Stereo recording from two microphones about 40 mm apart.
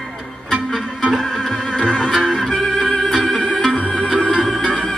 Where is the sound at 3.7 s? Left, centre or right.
Left.